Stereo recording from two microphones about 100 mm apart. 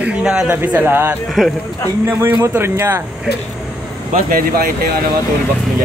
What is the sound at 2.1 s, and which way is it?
Speech, 20° right (ahead or behind).